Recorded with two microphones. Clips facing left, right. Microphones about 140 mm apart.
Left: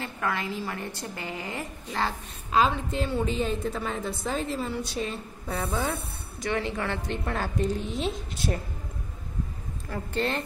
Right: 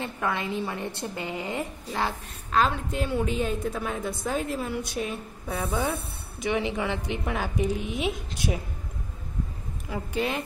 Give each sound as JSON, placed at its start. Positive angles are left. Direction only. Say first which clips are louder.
{"t": 0.0, "sound": "a woman's voice", "louder": "right 1 dB", "side_deg": -20}
{"t": 1.9, "sound": "a woman's voice", "louder": "left 2 dB", "side_deg": -10}
{"t": 9.8, "sound": "a woman's voice", "louder": "even", "side_deg": -10}